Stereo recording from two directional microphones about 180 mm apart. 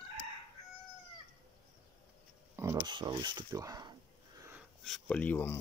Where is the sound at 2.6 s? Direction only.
20° right (ahead or behind).